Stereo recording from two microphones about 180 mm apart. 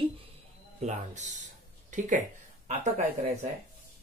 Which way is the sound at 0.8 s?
40° right (ahead or behind).